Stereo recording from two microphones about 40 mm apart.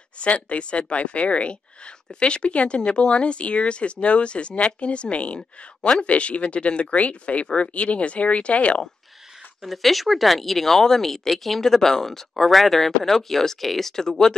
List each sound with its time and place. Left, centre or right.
0.2 s speech: left
5.8 s speech: left
6.0 s speech: left
9.6 s speech: centre